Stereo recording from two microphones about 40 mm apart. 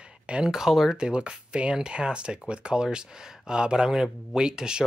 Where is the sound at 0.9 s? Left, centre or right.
Right.